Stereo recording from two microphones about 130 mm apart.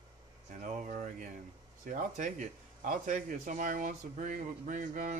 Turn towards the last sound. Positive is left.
turn(degrees=-75)  # may be behind; listen again after turning